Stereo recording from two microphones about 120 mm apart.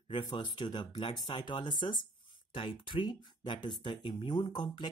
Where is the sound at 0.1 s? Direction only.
40° left (ahead or behind).